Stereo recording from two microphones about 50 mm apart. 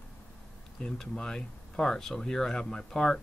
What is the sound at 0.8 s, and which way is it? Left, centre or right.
Speech, centre.